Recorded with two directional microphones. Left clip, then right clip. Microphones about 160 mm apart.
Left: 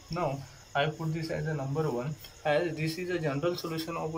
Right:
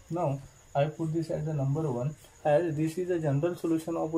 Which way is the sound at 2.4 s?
50° right (ahead or behind).